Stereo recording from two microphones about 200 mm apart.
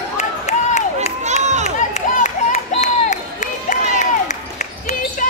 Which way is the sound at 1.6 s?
35° left (ahead or behind).